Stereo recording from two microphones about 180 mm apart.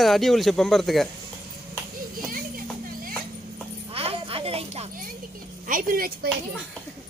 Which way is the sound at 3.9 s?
30° right (ahead or behind).